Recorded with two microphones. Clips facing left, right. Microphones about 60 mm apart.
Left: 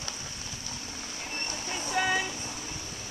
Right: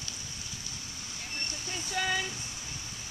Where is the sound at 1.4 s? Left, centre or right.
Left.